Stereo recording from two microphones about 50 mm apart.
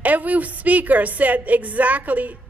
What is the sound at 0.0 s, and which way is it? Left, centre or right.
A woman's voice, right.